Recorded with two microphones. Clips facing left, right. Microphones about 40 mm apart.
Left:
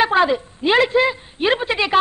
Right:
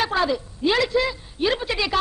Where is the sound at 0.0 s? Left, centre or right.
Left.